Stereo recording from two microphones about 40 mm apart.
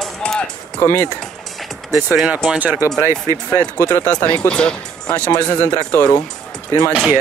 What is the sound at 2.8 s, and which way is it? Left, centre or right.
Speech, right.